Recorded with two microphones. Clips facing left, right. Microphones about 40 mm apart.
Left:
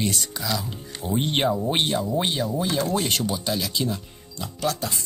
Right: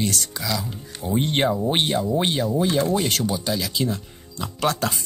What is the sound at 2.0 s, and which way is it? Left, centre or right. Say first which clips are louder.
Speech: right 2 dB; centre.